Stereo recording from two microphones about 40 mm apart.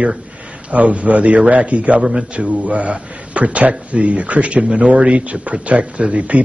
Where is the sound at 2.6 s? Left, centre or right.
Right.